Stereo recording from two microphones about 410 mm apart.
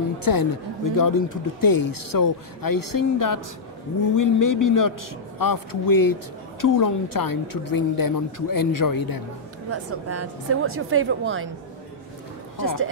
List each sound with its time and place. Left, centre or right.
0.2 s a woman's voice: left
9.7 s speech: right